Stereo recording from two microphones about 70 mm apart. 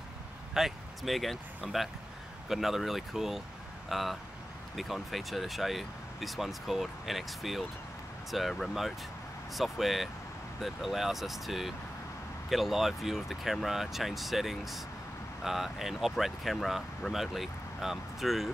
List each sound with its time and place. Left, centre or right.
0.6 s speech: centre